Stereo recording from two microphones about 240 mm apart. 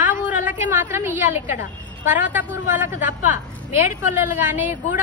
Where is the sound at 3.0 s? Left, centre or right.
Left.